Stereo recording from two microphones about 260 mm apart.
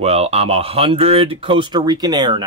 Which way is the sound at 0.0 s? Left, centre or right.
Right.